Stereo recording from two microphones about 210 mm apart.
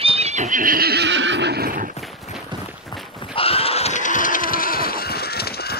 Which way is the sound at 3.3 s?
25° left (ahead or behind).